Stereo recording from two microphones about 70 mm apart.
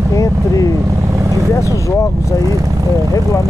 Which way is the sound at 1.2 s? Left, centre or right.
Right.